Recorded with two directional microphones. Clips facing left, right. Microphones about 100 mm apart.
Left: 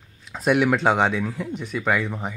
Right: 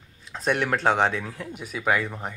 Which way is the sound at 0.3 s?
5° left (ahead or behind).